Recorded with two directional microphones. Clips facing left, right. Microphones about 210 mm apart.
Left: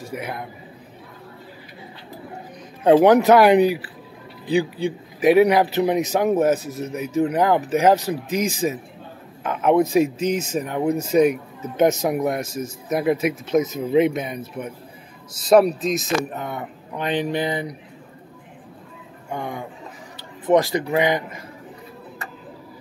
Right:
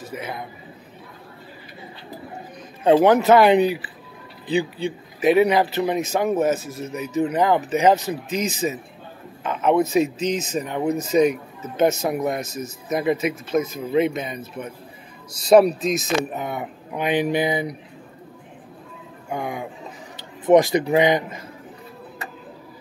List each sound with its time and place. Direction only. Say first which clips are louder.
0.0 s a man's voice: left 1 dB; 10° left (ahead or behind)
2.8 s speech: left 2 dB; 10° left (ahead or behind)
15.3 s speech: right 1 dB; centre (ahead or behind)
16.3 s speech: right 2 dB; 10° right (ahead or behind)
19.3 s a man's voice: right 1 dB; 10° right (ahead or behind)